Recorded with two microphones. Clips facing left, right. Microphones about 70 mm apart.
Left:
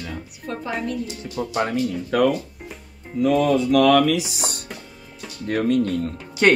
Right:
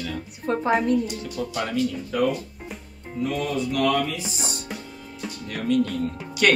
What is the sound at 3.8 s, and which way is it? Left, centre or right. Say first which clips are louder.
Speech: left 6 dB; left.